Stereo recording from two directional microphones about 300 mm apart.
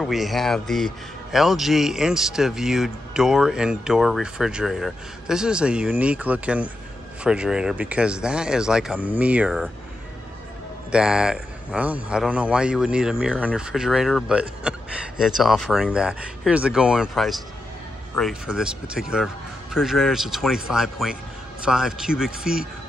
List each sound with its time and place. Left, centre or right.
0.0 s a man's voice: centre
10.9 s a man's voice: centre